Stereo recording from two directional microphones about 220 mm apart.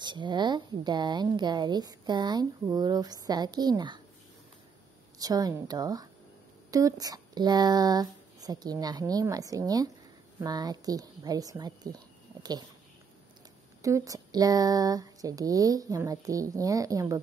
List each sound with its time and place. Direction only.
0.0 s a woman's voice: 20° right (ahead or behind)
5.2 s speech: 15° right (ahead or behind)
13.8 s speech: 15° right (ahead or behind)